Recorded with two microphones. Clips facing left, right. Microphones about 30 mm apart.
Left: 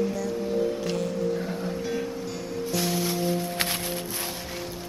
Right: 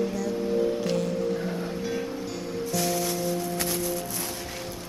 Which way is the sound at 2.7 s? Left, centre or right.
Centre.